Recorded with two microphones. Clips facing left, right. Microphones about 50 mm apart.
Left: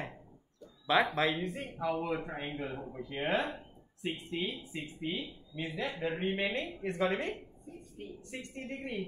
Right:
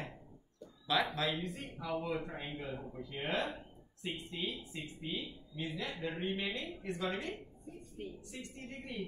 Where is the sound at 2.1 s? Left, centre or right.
Left.